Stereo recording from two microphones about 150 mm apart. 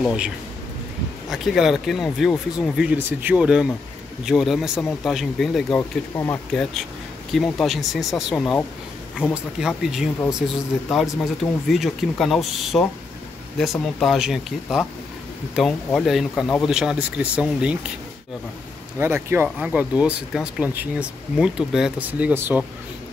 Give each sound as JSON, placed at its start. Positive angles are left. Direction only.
{"t": 0.0, "sound": "speech", "side_deg": -5}
{"t": 1.3, "sound": "speech", "side_deg": 0}
{"t": 5.8, "sound": "speech", "side_deg": 20}
{"t": 6.5, "sound": "speech", "side_deg": 5}
{"t": 11.7, "sound": "speech", "side_deg": 0}
{"t": 18.9, "sound": "speech", "side_deg": -15}